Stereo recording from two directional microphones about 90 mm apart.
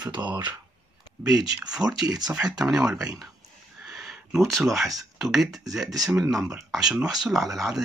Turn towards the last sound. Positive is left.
turn(degrees=-5)  # may be behind; listen again after turning